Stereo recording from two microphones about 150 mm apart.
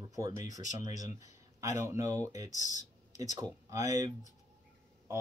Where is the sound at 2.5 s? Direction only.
55° left (ahead or behind).